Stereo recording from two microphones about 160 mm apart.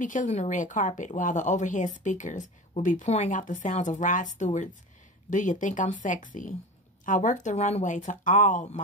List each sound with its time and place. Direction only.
0.0 s speech: 55° left (ahead or behind)